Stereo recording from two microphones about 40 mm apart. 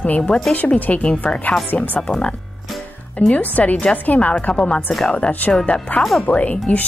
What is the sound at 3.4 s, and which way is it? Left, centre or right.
Speech, left.